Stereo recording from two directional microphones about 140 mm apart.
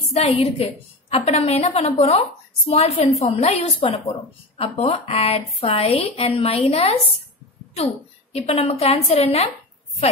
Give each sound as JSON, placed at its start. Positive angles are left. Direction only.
{"t": 0.1, "sound": "speech", "side_deg": 45}
{"t": 8.3, "sound": "speech", "side_deg": 45}